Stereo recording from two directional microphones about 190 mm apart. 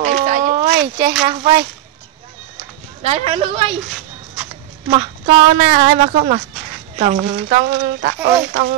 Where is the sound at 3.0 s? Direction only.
35° right (ahead or behind).